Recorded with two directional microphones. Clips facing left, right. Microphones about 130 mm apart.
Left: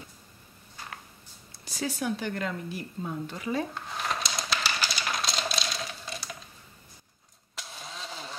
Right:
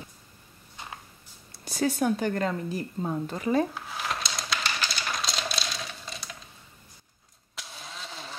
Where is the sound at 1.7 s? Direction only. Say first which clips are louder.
Right 6 dB; 55° right (ahead or behind).